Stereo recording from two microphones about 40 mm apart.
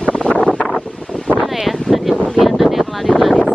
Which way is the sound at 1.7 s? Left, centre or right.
Centre.